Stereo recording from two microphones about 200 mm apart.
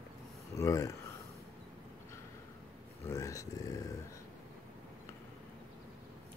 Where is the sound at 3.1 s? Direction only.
15° left (ahead or behind).